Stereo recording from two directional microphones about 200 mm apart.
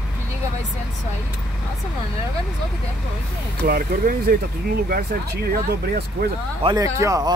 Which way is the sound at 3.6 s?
50° right (ahead or behind).